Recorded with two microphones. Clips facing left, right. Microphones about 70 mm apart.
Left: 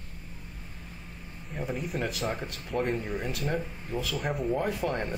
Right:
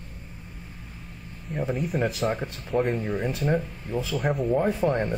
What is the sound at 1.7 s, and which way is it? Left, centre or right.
Speech, centre.